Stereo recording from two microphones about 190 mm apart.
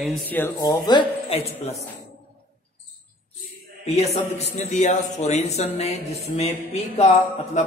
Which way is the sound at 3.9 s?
35° left (ahead or behind).